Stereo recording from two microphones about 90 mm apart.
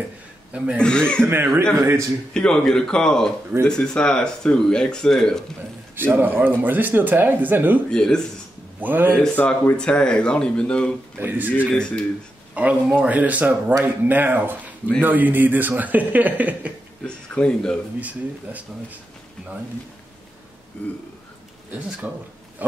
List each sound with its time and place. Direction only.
0.7 s speech: 10° left (ahead or behind)
1.2 s speech: 25° right (ahead or behind)
2.3 s speech: 5° left (ahead or behind)
5.9 s speech: 20° right (ahead or behind)
7.9 s speech: 10° left (ahead or behind)
8.8 s speech: 20° right (ahead or behind)
9.2 s speech: 10° left (ahead or behind)
11.1 s speech: 20° right (ahead or behind)
11.7 s speech: 10° left (ahead or behind)
12.5 s a man's voice: 15° right (ahead or behind)
17.0 s speech: 10° left (ahead or behind)
18.0 s a man's voice: 15° right (ahead or behind)
22.0 s a man's voice: 15° right (ahead or behind)